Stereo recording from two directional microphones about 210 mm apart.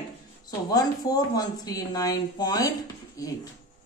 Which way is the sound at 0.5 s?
15° left (ahead or behind).